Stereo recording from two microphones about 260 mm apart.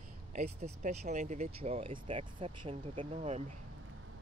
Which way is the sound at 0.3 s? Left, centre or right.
Right.